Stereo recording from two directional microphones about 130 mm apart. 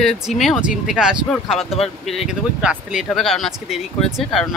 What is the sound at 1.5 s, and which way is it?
Speech, 50° left (ahead or behind).